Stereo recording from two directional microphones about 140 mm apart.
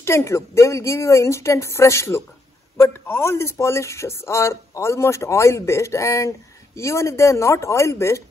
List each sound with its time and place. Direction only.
0.0 s speech: 20° left (ahead or behind)